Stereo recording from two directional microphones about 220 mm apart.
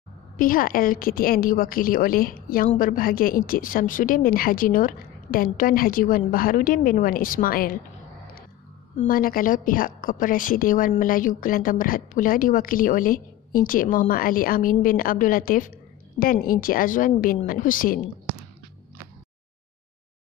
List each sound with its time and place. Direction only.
0.4 s a woman's voice: 40° left (ahead or behind)
8.9 s a woman's voice: 40° left (ahead or behind)